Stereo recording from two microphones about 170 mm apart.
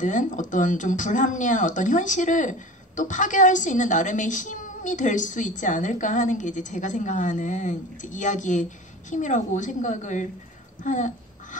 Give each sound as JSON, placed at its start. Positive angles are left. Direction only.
{"t": 0.0, "sound": "a woman's voice", "side_deg": 50}